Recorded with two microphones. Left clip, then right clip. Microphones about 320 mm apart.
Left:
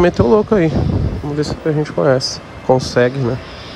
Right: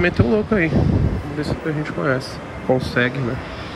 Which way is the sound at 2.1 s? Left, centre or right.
Centre.